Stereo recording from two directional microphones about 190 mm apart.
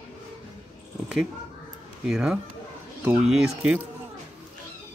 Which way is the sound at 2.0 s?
5° right (ahead or behind).